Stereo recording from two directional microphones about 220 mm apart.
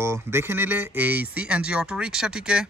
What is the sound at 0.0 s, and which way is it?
Speech, 10° right (ahead or behind).